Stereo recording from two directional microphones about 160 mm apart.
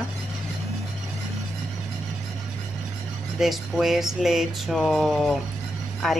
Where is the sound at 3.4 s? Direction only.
Centre (ahead or behind).